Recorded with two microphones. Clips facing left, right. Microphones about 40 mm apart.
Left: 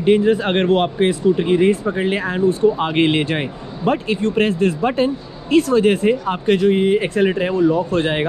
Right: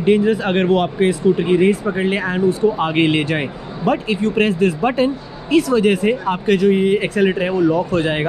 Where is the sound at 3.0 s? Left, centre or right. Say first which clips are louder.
Right 1 dB; right.